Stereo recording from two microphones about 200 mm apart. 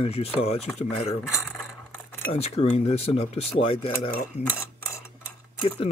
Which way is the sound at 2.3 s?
30° left (ahead or behind).